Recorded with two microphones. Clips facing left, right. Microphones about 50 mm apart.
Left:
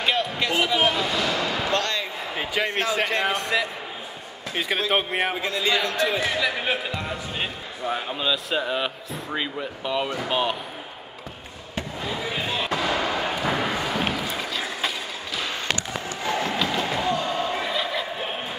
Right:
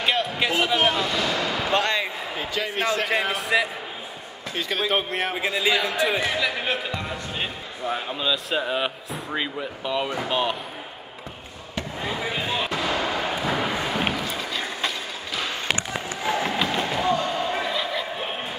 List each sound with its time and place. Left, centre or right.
0.0 s a sound: centre
1.1 s basketball bounce: centre
1.7 s slam: centre
2.6 s speech: centre
4.6 s a man's voice: centre
5.3 s speech: centre
12.1 s slam: centre
12.7 s fireworks: centre
13.6 s a sound: centre
14.2 s vehicle: centre
15.7 s a sound: centre
17.2 s basketball bounce: centre
17.5 s a sound: centre